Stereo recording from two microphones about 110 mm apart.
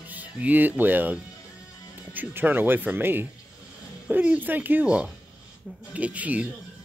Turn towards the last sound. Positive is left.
turn(degrees=-15)  # may be behind; listen again after turning